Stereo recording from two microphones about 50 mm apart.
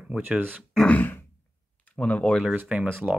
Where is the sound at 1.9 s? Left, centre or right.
Left.